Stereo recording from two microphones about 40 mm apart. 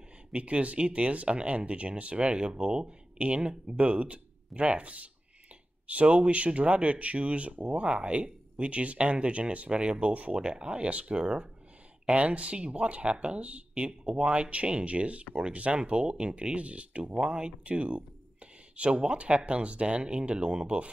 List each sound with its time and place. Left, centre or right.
0.3 s speech: right